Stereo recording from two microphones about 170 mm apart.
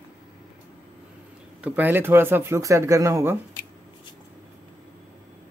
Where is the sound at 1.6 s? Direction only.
10° right (ahead or behind).